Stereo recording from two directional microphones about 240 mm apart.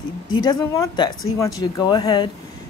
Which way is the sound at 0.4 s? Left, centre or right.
Centre.